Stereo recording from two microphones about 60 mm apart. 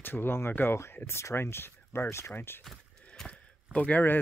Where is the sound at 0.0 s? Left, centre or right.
Left.